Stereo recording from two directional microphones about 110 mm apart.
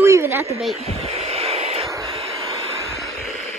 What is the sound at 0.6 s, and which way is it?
Speech, centre (ahead or behind).